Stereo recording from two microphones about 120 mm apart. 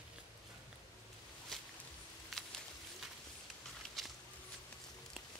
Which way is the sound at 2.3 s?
Centre (ahead or behind).